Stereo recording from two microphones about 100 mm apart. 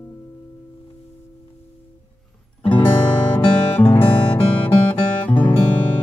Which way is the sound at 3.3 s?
20° left (ahead or behind).